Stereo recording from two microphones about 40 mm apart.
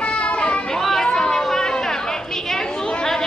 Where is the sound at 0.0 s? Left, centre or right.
Left.